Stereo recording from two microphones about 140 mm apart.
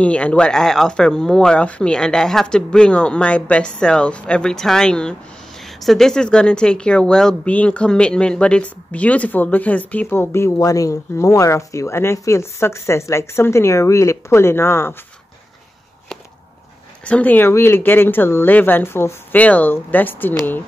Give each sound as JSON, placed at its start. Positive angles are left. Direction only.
{"t": 0.0, "sound": "speech", "side_deg": 10}
{"t": 17.0, "sound": "speech", "side_deg": 10}